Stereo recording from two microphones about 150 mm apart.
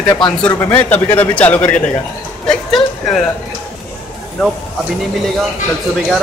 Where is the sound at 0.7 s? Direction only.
10° left (ahead or behind).